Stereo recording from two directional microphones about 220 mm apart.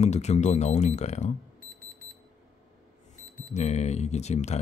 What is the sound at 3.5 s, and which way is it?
Speech, 30° left (ahead or behind).